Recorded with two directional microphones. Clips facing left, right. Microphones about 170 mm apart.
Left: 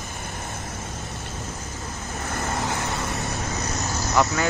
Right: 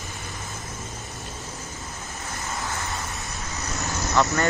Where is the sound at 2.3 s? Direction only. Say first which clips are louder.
Left 5 dB; 70° left (ahead or behind).